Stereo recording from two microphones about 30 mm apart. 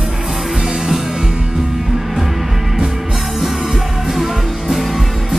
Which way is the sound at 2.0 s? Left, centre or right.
Centre.